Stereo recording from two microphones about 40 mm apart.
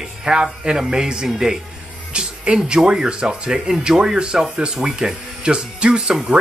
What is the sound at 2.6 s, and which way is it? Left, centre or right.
Speech, right.